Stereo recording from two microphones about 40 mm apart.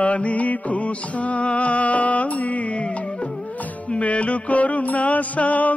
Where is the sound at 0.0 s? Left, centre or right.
Left.